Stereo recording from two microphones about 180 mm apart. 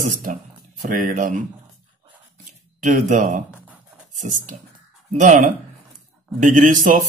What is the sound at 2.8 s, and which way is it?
Speech, 45° right (ahead or behind).